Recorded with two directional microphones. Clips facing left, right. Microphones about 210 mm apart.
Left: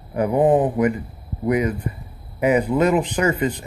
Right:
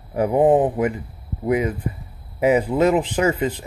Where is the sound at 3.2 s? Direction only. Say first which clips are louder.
Even; 5° right (ahead or behind).